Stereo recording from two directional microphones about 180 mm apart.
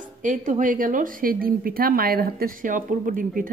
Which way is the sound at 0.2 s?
45° right (ahead or behind).